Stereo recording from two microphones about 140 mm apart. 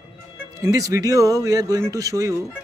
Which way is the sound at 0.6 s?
25° right (ahead or behind).